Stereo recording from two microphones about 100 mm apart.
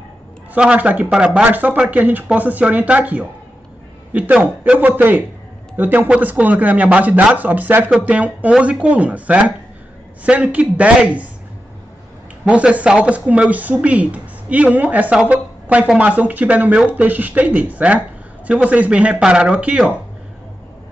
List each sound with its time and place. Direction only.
0.6 s speech: 15° right (ahead or behind)
12.4 s a woman's voice: 15° right (ahead or behind)